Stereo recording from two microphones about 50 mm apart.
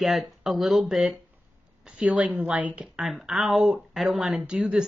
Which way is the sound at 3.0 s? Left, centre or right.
Centre.